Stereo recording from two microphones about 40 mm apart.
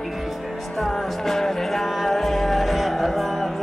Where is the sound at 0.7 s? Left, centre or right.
Centre.